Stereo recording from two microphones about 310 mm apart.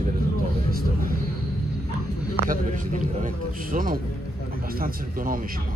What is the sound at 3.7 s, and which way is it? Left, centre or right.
Speech, right.